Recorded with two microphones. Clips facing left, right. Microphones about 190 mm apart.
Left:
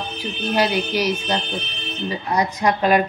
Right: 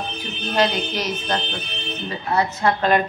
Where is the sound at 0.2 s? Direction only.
10° left (ahead or behind).